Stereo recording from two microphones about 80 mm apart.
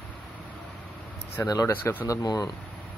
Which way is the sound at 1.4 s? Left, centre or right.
Left.